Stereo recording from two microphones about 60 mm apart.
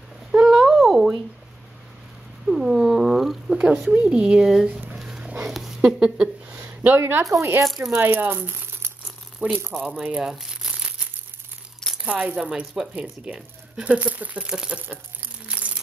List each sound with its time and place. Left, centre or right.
0.5 s a sound: centre
2.4 s cat: centre
3.5 s speech: right; by 4.6 s centre
5.0 s a sound: centre
5.8 s speech: centre
6.5 s a sound: right
7.0 s speech: right
7.6 s speech: centre
8.0 s speech: right
10.2 s crumpling: centre
12.1 s speech: right
12.9 s speech: right
14.4 s speech: centre
15.4 s a sound: right